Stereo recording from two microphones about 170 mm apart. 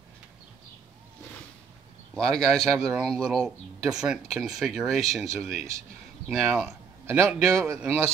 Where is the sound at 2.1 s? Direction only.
5° left (ahead or behind).